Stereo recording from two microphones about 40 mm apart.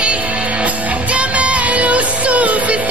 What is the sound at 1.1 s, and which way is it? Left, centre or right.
Music, right.